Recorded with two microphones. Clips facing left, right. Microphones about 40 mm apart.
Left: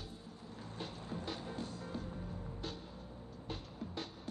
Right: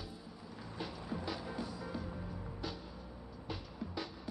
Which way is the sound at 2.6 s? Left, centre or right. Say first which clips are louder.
Right 3 dB; centre.